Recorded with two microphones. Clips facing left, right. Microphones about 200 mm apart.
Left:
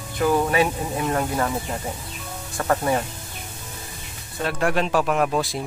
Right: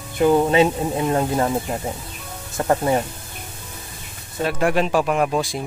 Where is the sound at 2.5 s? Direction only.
25° right (ahead or behind).